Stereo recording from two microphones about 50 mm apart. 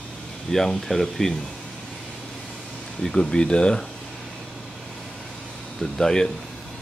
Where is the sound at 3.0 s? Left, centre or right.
Centre.